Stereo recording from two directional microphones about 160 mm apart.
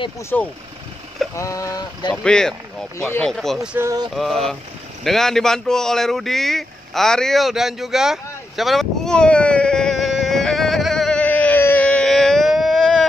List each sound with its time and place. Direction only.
0.3 s speech: 10° left (ahead or behind)
1.3 s speech: 20° left (ahead or behind)
2.2 s speech: 5° left (ahead or behind)
3.6 s speech: 10° right (ahead or behind)
4.1 s speech: centre (ahead or behind)
5.0 s a sound: centre (ahead or behind)